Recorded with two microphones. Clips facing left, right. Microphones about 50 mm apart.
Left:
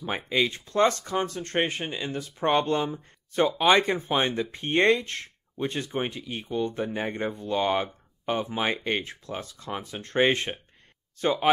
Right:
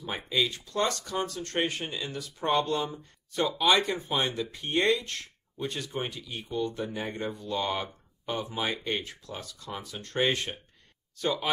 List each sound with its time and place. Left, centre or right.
0.3 s speech: left